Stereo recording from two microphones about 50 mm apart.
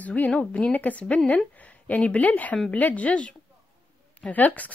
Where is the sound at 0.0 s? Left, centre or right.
Left.